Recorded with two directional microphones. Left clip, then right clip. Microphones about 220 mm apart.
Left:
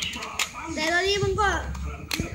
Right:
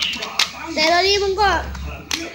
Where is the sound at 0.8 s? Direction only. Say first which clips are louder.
Right 8 dB; 15° left (ahead or behind).